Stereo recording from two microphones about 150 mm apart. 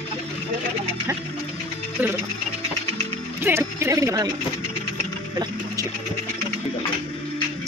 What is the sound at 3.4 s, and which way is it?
Speech, 15° right (ahead or behind).